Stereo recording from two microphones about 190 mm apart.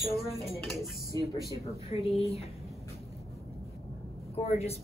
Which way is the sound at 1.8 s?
35° left (ahead or behind).